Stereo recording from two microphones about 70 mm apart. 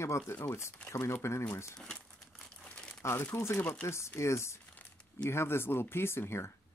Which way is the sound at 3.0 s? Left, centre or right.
Left.